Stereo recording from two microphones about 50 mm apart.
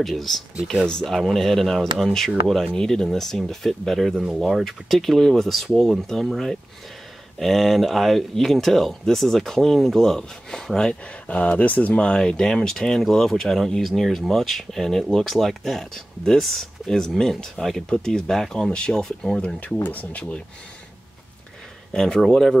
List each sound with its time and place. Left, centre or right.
0.0 s speech: centre
4.1 s speech: centre
4.6 s speech: centre
10.9 s speech: left
19.4 s speech: left
21.9 s speech: centre